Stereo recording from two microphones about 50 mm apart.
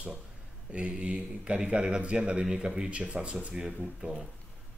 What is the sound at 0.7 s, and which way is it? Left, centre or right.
Speech, right.